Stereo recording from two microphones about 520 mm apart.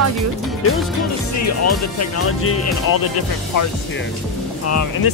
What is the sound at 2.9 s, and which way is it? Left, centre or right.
Speech, left.